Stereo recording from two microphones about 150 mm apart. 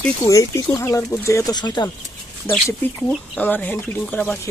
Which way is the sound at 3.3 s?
10° left (ahead or behind).